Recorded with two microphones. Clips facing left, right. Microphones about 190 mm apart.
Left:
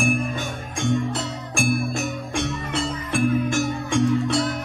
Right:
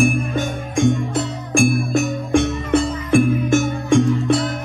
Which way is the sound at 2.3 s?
50° right (ahead or behind).